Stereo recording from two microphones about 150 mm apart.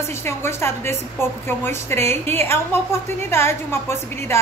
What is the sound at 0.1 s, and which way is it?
A woman's voice, 15° left (ahead or behind).